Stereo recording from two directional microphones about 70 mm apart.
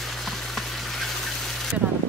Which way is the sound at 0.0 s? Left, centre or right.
Centre.